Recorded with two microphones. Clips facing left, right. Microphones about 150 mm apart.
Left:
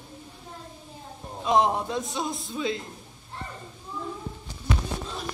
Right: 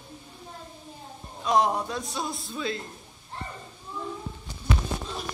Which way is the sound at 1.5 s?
25° left (ahead or behind).